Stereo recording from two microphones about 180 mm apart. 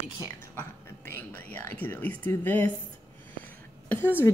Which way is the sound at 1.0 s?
10° left (ahead or behind).